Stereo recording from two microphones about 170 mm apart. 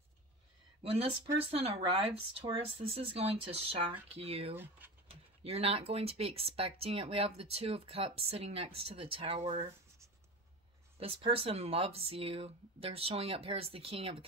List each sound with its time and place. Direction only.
1.5 s speech: 35° right (ahead or behind)
4.6 s speech: 10° right (ahead or behind)
5.4 s speech: 35° right (ahead or behind)
11.0 s speech: 35° right (ahead or behind)